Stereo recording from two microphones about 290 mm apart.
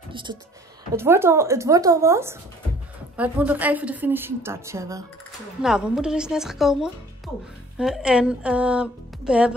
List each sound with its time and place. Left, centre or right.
0.1 s a woman's voice: centre